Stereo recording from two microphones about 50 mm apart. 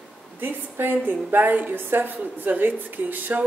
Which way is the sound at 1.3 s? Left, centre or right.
Right.